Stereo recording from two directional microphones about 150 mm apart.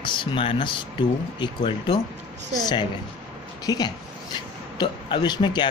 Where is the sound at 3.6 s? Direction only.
25° left (ahead or behind).